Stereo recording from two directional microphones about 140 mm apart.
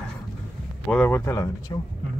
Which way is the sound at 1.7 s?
30° left (ahead or behind).